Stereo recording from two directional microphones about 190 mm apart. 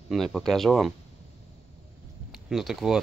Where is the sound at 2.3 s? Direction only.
Centre (ahead or behind).